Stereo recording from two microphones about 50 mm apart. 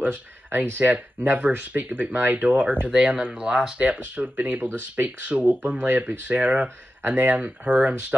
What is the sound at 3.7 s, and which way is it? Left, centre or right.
Speech, right.